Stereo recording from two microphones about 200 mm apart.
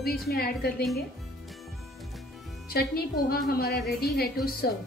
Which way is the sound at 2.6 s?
50° left (ahead or behind).